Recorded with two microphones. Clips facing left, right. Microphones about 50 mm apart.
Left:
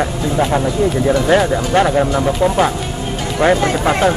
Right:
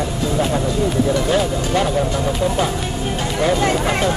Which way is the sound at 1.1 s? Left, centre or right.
Left.